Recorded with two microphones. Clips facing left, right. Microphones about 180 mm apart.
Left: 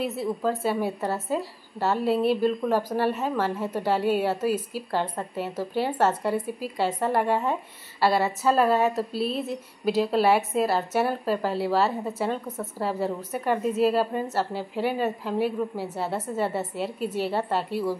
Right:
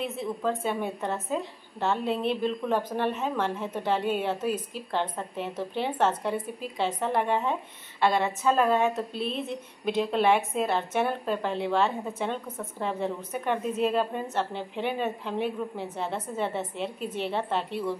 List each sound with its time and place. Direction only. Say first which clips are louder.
0.0 s a woman's voice: left 3 dB; 5° left (ahead or behind)